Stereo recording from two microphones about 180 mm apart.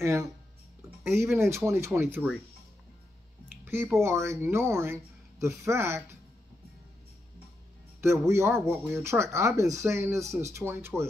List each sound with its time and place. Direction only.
0.0 s speech: 15° right (ahead or behind)
3.6 s speech: 10° right (ahead or behind)
8.0 s speech: 15° right (ahead or behind)